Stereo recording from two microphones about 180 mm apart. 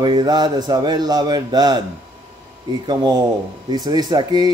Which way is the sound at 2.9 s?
25° right (ahead or behind).